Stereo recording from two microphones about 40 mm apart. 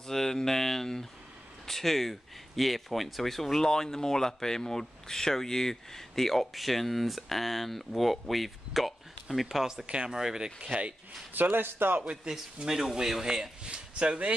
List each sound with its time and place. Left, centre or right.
0.0 s speech: centre
9.8 s speech: right
10.1 s speech: centre
11.3 s a man's voice: right
12.3 s speech: right
12.6 s speech: centre
13.7 s speech: right